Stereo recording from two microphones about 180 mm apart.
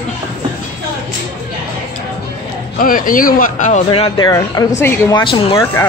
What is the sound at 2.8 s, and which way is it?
A man's voice, 50° left (ahead or behind).